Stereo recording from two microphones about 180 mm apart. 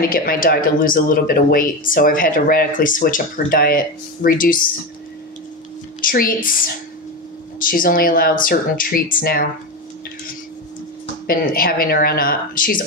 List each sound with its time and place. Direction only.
0.1 s speech: 55° left (ahead or behind)
5.9 s speech: 55° left (ahead or behind)
11.2 s speech: 55° left (ahead or behind)